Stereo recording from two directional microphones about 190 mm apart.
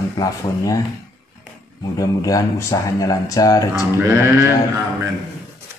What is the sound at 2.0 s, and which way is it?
Speech, 20° left (ahead or behind).